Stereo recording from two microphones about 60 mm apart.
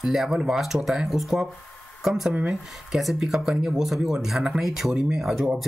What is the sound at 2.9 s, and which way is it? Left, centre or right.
Speech, centre.